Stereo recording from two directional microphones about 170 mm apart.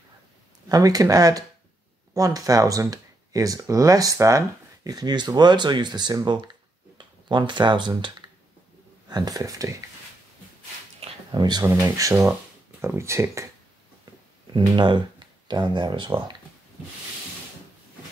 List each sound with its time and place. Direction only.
0.7 s speech: 20° right (ahead or behind)
11.0 s a sound: 25° right (ahead or behind)
11.6 s speech: 20° right (ahead or behind)
14.5 s speech: 25° right (ahead or behind)